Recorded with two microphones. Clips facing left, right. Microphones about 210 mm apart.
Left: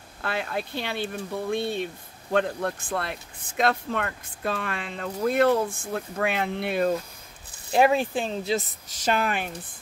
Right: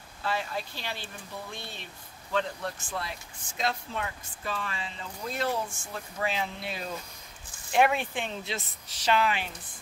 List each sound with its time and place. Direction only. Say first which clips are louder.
0.2 s speech: left 3 dB; 60° left (ahead or behind)
7.7 s speech: left 5 dB; 35° left (ahead or behind)